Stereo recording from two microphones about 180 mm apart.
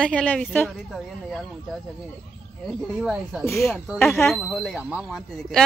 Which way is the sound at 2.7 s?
Centre (ahead or behind).